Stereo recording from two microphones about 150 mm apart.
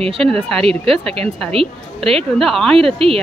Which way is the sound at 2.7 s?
40° right (ahead or behind).